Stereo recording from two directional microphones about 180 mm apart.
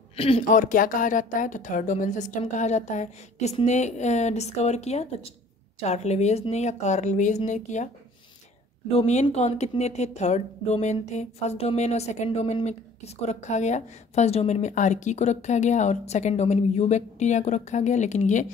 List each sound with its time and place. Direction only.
0.1 s a sound: 30° left (ahead or behind)
0.5 s a woman's voice: 45° left (ahead or behind)
8.9 s a woman's voice: 40° left (ahead or behind)